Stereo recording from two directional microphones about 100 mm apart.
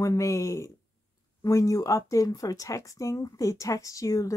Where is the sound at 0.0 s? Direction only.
30° left (ahead or behind).